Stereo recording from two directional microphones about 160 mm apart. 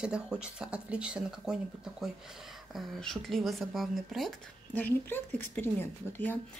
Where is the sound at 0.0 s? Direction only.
5° right (ahead or behind).